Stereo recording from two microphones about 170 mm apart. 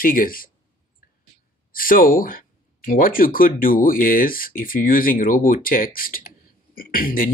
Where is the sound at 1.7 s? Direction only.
55° left (ahead or behind).